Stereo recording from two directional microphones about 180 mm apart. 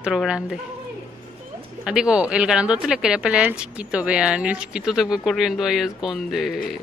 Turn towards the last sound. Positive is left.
turn(degrees=0)  # may be behind; listen again after turning